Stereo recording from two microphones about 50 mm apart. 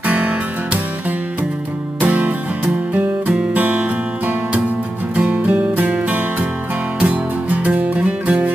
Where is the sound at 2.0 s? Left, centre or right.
Right.